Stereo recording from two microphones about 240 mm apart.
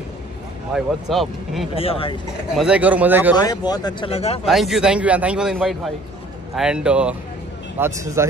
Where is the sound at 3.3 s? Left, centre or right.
Centre.